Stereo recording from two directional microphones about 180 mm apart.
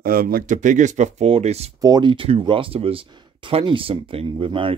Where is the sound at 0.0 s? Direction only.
55° right (ahead or behind); by 1.7 s 35° right (ahead or behind).